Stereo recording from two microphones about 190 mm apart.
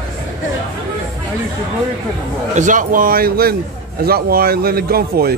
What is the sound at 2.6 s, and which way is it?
Speech, 40° right (ahead or behind).